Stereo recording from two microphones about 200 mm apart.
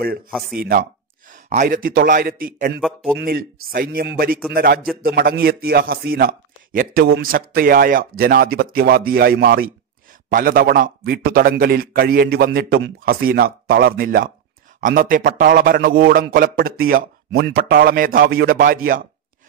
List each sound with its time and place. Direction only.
0.3 s speech: centre (ahead or behind)
0.6 s a man's voice: 50° right (ahead or behind)
1.3 s a man's voice: 40° right (ahead or behind)
2.8 s speech: centre (ahead or behind)
3.2 s a man's voice: 50° right (ahead or behind)